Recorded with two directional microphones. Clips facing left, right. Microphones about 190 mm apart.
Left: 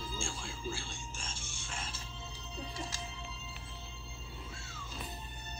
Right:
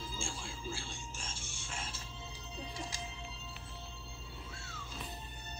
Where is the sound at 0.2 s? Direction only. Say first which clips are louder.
Left 2 dB; 5° right (ahead or behind).